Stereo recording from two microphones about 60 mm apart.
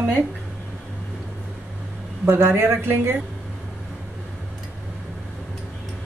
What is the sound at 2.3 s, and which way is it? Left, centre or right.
Speech, right.